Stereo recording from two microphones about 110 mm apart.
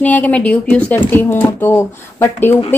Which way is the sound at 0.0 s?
15° left (ahead or behind).